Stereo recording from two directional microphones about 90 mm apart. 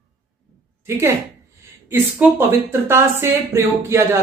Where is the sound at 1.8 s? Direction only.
25° right (ahead or behind).